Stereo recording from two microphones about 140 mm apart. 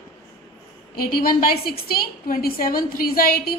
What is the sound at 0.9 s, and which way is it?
A woman's voice, 90° left.